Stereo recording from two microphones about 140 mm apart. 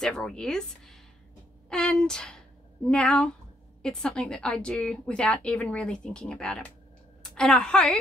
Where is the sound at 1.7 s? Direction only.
5° left (ahead or behind).